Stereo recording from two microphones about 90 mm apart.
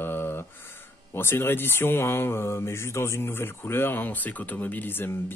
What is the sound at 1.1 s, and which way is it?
Speech, 25° left (ahead or behind).